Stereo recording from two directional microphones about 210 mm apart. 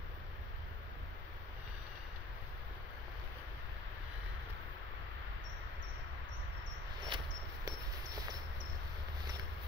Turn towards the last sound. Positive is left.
turn(degrees=-25)  # may be behind; listen again after turning